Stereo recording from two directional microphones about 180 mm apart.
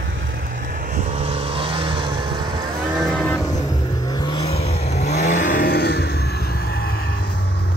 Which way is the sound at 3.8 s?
25° left (ahead or behind).